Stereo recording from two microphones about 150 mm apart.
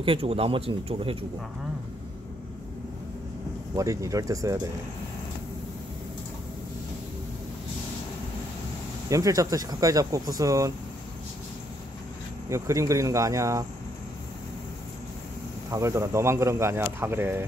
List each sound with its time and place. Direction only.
0.0 s speech: 35° right (ahead or behind)
3.7 s speech: 20° right (ahead or behind)
9.1 s speech: 20° right (ahead or behind)
12.4 s speech: 20° right (ahead or behind)
15.7 s speech: 20° right (ahead or behind)